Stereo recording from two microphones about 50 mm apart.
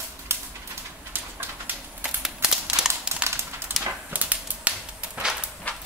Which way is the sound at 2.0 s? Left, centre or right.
Centre.